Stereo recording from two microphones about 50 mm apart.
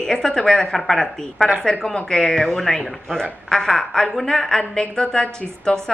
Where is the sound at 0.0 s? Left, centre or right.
Centre.